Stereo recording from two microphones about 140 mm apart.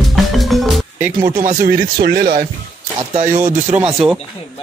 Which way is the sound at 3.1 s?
65° right (ahead or behind).